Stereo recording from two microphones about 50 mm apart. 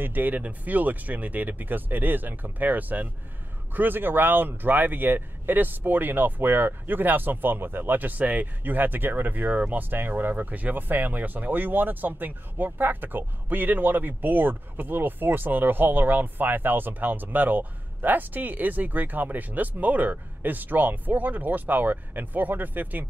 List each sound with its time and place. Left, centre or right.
0.0 s speech: right